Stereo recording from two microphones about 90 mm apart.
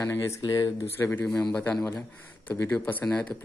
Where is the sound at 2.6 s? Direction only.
20° left (ahead or behind).